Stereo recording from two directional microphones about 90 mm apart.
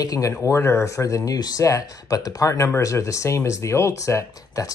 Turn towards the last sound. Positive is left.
turn(degrees=35)  # may be behind; listen again after turning